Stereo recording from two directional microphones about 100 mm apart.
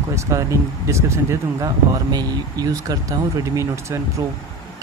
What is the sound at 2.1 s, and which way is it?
Speech, 40° right (ahead or behind).